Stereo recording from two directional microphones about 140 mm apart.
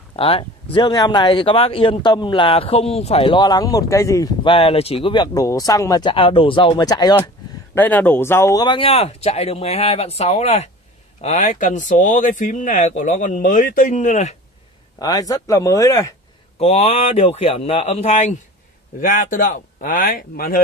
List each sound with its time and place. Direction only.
0.1 s speech: 40° left (ahead or behind); by 4.3 s 20° left (ahead or behind)
4.5 s speech: 40° left (ahead or behind)
5.3 s speech: 25° left (ahead or behind)
7.7 s speech: 15° left (ahead or behind)
8.6 s speech: 40° left (ahead or behind); by 14.3 s 60° left (ahead or behind)
15.0 s speech: 25° left (ahead or behind)
16.5 s speech: 50° left (ahead or behind)
18.9 s speech: 70° left (ahead or behind); by 20.6 s 90° left